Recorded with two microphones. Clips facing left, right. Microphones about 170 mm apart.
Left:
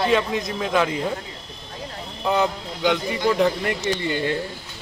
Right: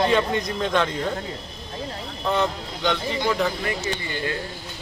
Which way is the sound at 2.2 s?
10° left (ahead or behind).